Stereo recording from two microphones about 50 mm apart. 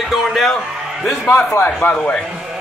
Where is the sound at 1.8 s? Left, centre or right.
Left.